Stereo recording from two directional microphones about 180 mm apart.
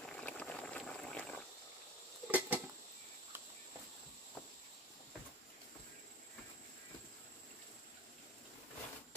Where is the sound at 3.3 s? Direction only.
10° right (ahead or behind).